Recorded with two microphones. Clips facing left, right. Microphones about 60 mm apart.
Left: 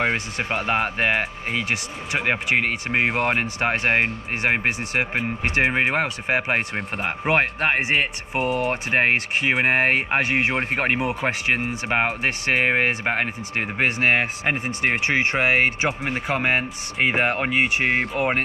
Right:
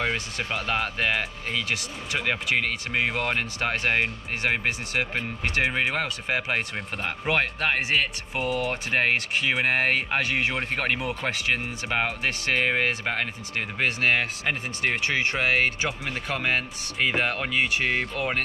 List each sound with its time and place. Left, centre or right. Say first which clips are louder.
0.0 s speech: left 4 dB; left
2.9 s speech: left 5 dB; centre
3.3 s speech: left 4 dB; left
8.4 s speech: left 4 dB; centre
8.9 s speech: left 3 dB; left